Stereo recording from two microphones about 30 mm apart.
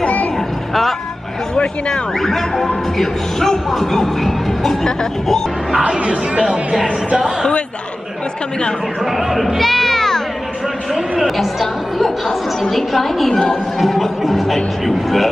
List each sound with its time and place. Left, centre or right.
1.5 s a sound: left
2.1 s speech: centre
5.9 s speech: right
9.0 s speech: centre
9.6 s music: centre
11.2 s speech: centre